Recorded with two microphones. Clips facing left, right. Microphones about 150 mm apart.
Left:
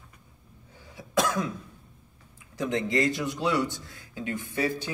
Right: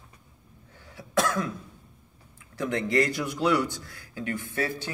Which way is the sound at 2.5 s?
20° left (ahead or behind).